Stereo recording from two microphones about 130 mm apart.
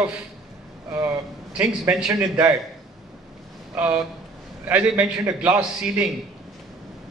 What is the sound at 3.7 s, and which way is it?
A man's voice, 15° right (ahead or behind).